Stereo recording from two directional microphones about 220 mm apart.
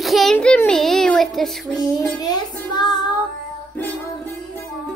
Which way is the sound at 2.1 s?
20° left (ahead or behind).